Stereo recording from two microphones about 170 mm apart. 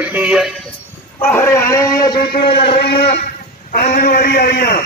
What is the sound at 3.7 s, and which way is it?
A man's voice, 55° left (ahead or behind).